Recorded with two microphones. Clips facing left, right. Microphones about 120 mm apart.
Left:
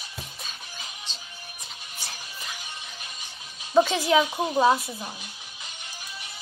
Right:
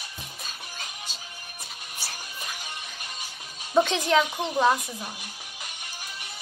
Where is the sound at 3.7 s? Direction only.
5° left (ahead or behind).